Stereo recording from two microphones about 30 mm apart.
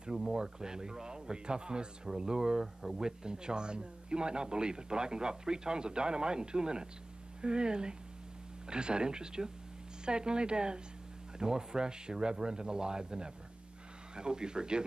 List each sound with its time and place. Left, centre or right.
0.2 s a man's voice: right